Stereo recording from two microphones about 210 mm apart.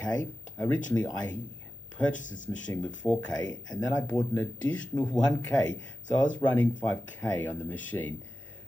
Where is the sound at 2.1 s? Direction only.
35° left (ahead or behind).